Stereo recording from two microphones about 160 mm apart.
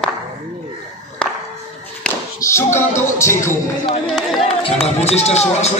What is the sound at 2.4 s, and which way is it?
Music, 15° left (ahead or behind).